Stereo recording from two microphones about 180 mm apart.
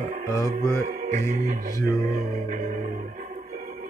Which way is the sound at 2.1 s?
45° right (ahead or behind).